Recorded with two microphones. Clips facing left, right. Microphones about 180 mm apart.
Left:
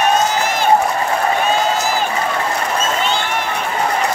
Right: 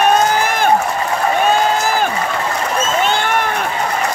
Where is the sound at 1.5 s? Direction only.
50° right (ahead or behind).